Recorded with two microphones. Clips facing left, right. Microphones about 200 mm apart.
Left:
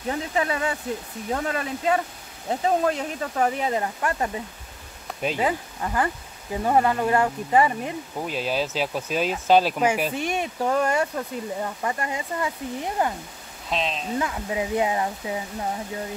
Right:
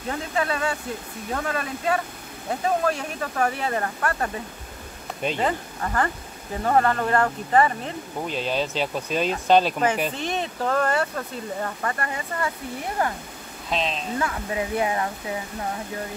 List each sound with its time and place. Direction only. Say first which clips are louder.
0.1 s speech: left 1 dB; 15° left (ahead or behind)
13.7 s speech: even; centre (ahead or behind)
14.1 s speech: left 1 dB; 15° left (ahead or behind)